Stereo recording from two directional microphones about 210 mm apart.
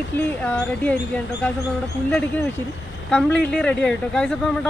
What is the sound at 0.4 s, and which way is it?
Speech, 5° left (ahead or behind).